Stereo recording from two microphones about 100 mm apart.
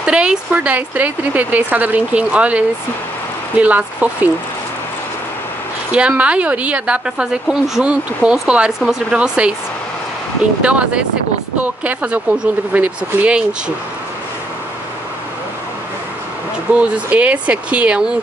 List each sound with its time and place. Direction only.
0.0 s a woman's voice: 10° right (ahead or behind)
5.9 s a woman's voice: 10° right (ahead or behind)
10.6 s a woman's voice: 10° right (ahead or behind)
16.7 s a woman's voice: 15° right (ahead or behind)